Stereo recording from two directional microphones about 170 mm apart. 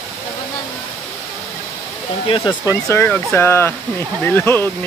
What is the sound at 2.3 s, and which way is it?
Hair dryer, 30° left (ahead or behind).